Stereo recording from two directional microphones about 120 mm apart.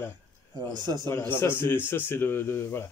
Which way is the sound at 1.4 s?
20° left (ahead or behind).